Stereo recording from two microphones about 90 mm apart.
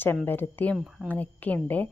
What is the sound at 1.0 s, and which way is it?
Speech, 20° left (ahead or behind).